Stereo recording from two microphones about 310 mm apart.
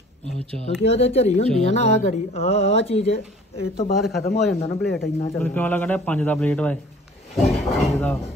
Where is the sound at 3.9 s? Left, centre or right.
Centre.